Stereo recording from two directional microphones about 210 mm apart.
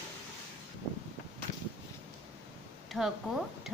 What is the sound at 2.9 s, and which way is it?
Speech, centre (ahead or behind).